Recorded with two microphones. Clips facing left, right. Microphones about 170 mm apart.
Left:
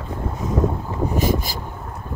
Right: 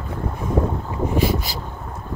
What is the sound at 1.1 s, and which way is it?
Vehicle, 45° left (ahead or behind).